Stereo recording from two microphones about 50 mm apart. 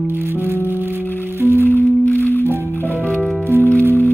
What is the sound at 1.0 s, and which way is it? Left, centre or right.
Music, left.